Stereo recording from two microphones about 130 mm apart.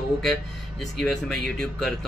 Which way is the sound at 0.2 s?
5° left (ahead or behind).